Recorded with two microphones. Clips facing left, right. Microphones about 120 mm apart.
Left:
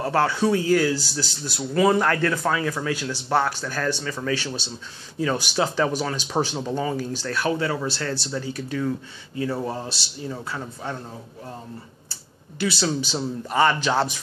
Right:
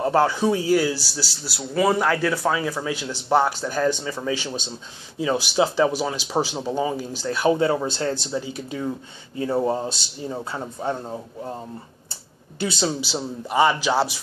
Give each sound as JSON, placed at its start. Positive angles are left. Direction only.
{"t": 0.0, "sound": "speech", "side_deg": -15}